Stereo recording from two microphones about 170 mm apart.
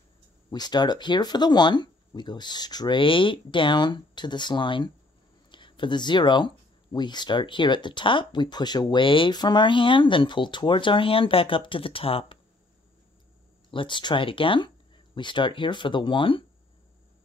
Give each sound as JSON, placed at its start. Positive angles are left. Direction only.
{"t": 0.5, "sound": "speech", "side_deg": 25}
{"t": 13.7, "sound": "speech", "side_deg": 30}